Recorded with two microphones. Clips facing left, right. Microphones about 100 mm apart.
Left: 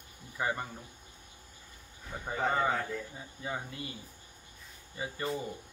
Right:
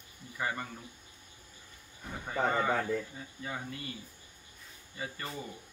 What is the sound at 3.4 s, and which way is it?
Speech, 20° left (ahead or behind).